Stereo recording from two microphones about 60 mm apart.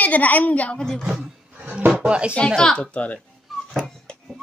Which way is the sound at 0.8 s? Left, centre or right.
Centre.